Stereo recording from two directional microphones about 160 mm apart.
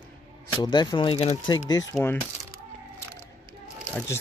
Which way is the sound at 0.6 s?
25° left (ahead or behind).